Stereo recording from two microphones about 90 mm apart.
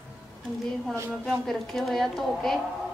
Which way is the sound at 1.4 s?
5° left (ahead or behind).